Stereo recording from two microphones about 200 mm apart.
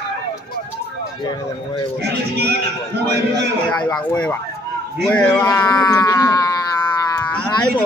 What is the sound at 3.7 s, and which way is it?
Speech, 5° left (ahead or behind).